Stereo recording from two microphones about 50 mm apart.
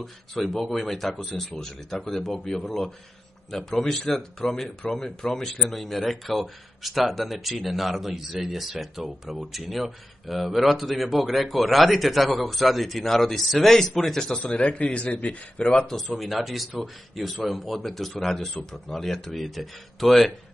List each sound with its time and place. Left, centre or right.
0.0 s speech: centre
14.4 s speech: left
16.1 s speech: centre